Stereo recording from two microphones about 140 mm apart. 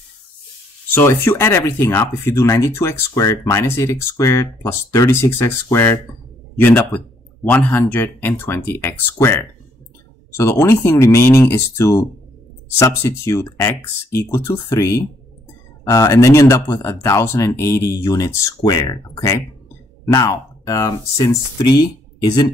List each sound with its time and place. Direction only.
0.9 s speech: 15° left (ahead or behind); by 22.5 s 30° left (ahead or behind)